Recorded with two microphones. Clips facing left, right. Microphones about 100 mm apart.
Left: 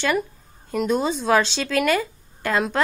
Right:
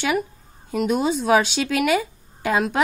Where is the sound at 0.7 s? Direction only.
5° right (ahead or behind).